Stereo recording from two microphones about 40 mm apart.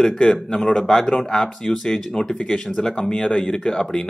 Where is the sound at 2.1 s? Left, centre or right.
Centre.